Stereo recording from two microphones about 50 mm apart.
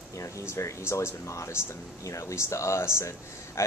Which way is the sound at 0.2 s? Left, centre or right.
Left.